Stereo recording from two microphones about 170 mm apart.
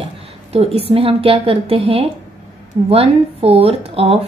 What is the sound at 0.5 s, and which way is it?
A woman's voice, 35° right (ahead or behind).